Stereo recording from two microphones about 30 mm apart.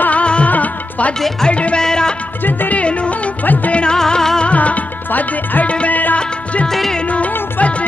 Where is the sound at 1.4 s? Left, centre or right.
Left.